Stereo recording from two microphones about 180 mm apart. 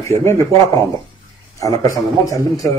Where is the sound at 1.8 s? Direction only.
20° left (ahead or behind).